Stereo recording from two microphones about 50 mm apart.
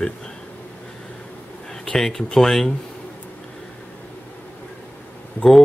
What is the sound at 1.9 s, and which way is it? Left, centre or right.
Speech, centre.